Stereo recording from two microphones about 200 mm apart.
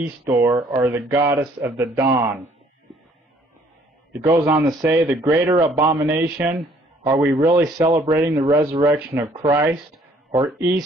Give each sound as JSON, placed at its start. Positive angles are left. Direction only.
{"t": 0.0, "sound": "speech", "side_deg": -15}
{"t": 4.1, "sound": "speech", "side_deg": -15}